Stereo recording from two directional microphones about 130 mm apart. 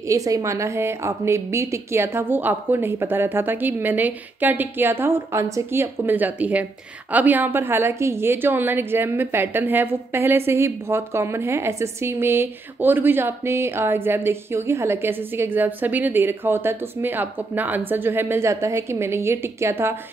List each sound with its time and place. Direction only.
0.1 s a woman's voice: 25° right (ahead or behind)